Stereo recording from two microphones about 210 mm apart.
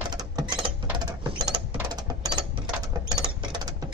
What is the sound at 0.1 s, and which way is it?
Rodents, 20° right (ahead or behind).